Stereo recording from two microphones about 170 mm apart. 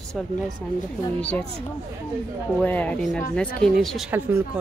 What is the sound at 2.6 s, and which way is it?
A woman's voice, 10° left (ahead or behind).